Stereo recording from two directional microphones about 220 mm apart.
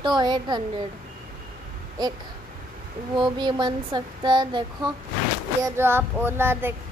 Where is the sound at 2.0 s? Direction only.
20° right (ahead or behind).